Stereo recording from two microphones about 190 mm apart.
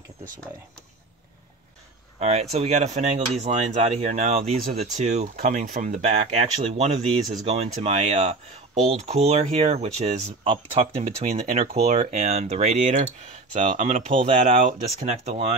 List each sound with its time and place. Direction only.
2.1 s speech: 35° right (ahead or behind)
14.5 s speech: 45° right (ahead or behind)